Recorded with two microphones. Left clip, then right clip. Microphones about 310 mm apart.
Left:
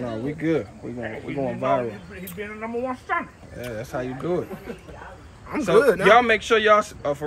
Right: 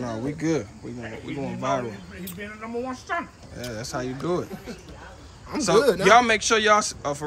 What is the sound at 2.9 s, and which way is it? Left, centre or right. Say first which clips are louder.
Speech: left 4 dB; left.